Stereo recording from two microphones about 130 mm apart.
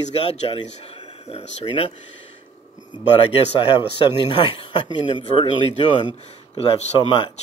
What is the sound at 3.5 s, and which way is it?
Speech, 40° left (ahead or behind).